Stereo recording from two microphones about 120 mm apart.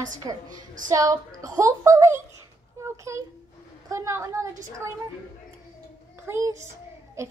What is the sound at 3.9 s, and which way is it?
A woman's voice, 25° right (ahead or behind).